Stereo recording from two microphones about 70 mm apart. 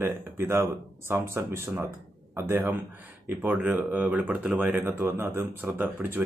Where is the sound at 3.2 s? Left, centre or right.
Right.